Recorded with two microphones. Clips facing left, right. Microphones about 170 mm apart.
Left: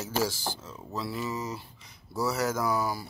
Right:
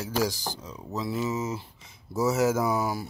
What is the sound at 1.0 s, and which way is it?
Speech, 20° right (ahead or behind).